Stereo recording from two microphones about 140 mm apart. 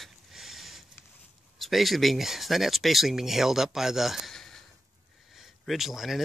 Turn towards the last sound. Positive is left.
turn(degrees=0)  # may be behind; listen again after turning